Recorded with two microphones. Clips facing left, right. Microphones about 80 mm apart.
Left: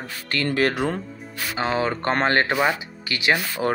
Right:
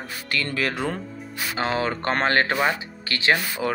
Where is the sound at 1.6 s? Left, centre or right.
Left.